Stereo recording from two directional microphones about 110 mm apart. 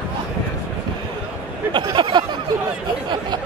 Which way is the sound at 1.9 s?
45° right (ahead or behind).